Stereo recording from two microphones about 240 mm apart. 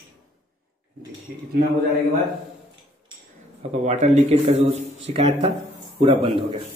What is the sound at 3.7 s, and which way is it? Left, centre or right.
A man's voice, right.